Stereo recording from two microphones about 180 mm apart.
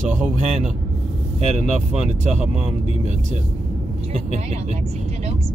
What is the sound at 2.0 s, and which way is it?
Speech, 40° right (ahead or behind).